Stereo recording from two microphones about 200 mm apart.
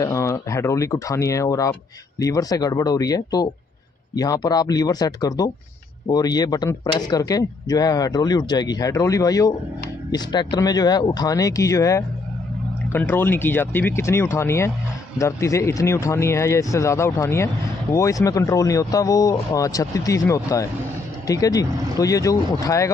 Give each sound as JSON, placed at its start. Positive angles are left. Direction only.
{"t": 0.0, "sound": "speech", "side_deg": 15}